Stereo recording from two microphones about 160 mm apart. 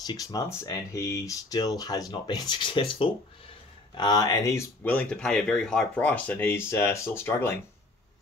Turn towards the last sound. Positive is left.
turn(degrees=15)  # may be behind; listen again after turning